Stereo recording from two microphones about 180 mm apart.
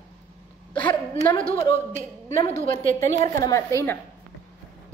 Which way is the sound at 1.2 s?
25° left (ahead or behind).